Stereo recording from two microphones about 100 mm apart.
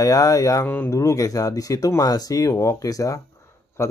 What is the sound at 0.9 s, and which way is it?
Speech, 35° left (ahead or behind).